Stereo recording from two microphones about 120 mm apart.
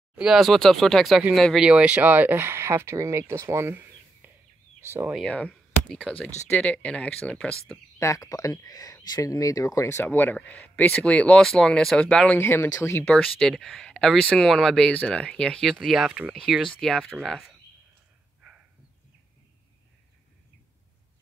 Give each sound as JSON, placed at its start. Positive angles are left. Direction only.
{"t": 0.1, "sound": "speech", "side_deg": -5}
{"t": 1.7, "sound": "speech", "side_deg": -10}
{"t": 5.2, "sound": "speech", "side_deg": 5}
{"t": 8.0, "sound": "speech", "side_deg": 25}
{"t": 10.0, "sound": "speech", "side_deg": 15}
{"t": 12.4, "sound": "speech", "side_deg": 20}
{"t": 13.1, "sound": "speech", "side_deg": 5}